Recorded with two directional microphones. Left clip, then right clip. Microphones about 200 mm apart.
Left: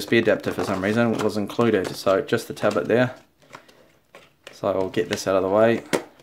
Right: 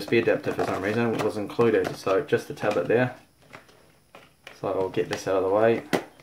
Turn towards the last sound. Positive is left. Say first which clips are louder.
# left 3 dB
turn(degrees=50)  # may be behind; listen again after turning